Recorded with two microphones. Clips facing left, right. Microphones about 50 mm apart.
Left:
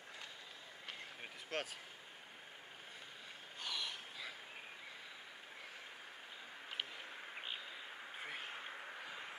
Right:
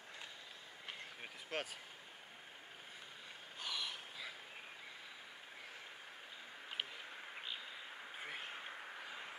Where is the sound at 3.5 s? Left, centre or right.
Centre.